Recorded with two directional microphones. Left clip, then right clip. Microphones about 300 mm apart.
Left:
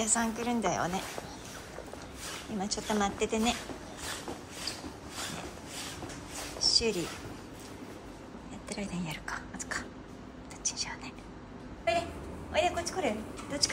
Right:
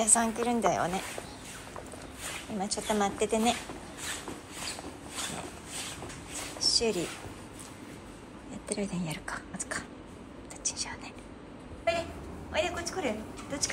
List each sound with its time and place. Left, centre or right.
0.0 s speech: centre
2.6 s a woman's voice: centre
6.6 s a sound: centre
8.6 s speech: centre
10.6 s whispering: centre
11.8 s a sound: centre
12.5 s speech: centre